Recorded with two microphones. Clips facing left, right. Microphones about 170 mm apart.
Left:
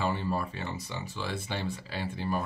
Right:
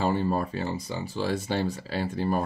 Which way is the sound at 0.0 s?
40° right (ahead or behind).